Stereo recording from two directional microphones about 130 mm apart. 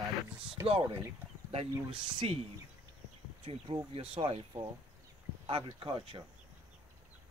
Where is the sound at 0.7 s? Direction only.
45° right (ahead or behind).